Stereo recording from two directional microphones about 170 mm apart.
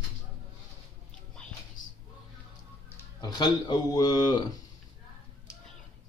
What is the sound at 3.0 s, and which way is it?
Speech, 20° left (ahead or behind).